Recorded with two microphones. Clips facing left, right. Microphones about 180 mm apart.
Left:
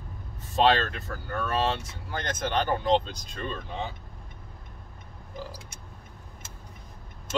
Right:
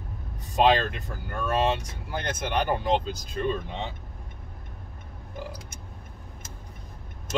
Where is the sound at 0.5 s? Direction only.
15° right (ahead or behind).